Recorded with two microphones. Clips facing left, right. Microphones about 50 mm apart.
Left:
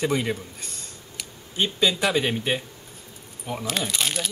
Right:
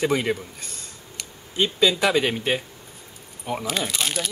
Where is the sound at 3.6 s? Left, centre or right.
Centre.